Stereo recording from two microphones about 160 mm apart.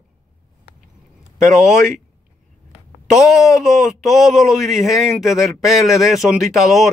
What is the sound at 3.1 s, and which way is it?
A man's voice, centre (ahead or behind).